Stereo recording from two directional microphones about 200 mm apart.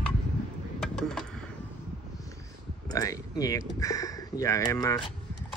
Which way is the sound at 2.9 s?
15° left (ahead or behind).